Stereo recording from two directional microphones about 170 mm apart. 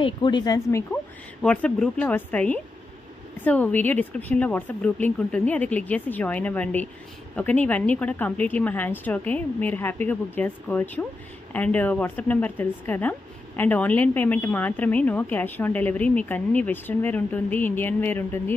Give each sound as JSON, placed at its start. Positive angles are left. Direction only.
{"t": 0.0, "sound": "speech", "side_deg": 25}
{"t": 1.4, "sound": "a woman's voice", "side_deg": 5}